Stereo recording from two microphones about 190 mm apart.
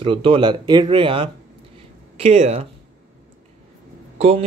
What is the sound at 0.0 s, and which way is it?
A man's voice, 30° right (ahead or behind).